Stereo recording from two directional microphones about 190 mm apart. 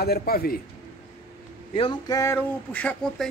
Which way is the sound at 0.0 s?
55° left (ahead or behind).